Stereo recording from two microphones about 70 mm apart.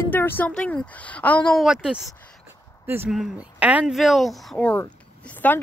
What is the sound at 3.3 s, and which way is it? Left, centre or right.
Speech, centre.